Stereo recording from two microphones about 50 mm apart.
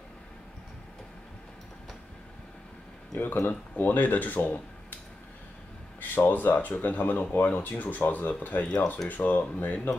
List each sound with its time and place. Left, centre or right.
3.2 s speech: left
5.9 s speech: left